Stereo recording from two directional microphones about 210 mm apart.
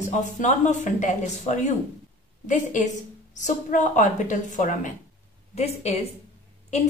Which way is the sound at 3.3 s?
35° left (ahead or behind).